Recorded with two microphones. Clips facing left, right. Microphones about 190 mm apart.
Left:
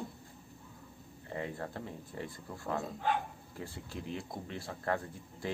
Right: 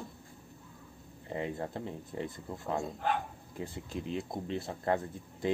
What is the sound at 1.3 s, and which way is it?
Speech, 20° right (ahead or behind).